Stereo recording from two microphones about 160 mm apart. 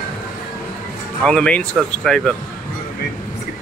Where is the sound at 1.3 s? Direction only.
5° left (ahead or behind).